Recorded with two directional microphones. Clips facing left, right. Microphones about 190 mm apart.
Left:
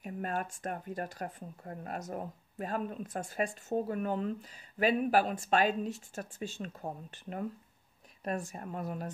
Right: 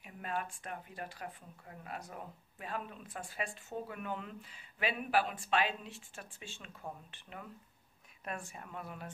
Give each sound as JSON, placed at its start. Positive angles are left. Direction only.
{"t": 0.0, "sound": "speech", "side_deg": 45}